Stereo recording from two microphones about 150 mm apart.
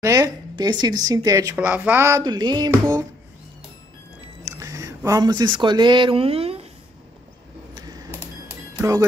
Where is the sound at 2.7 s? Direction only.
20° right (ahead or behind).